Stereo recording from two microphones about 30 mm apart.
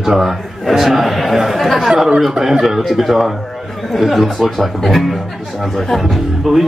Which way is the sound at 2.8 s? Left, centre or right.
Centre.